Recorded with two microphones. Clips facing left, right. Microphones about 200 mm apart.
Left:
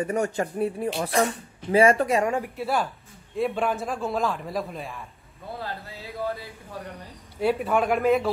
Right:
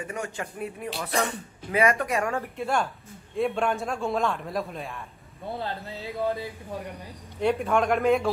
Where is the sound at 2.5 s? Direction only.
5° left (ahead or behind).